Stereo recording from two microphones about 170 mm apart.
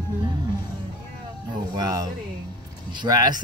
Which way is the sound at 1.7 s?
20° right (ahead or behind).